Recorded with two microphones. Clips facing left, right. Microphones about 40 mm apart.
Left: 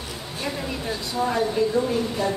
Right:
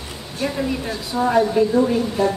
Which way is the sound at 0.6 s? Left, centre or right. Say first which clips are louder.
Right 5 dB; centre.